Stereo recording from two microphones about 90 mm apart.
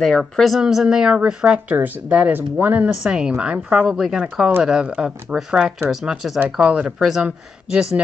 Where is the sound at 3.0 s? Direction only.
10° right (ahead or behind).